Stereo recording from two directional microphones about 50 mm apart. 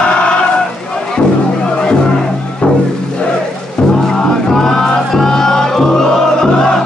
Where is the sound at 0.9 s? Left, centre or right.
Centre.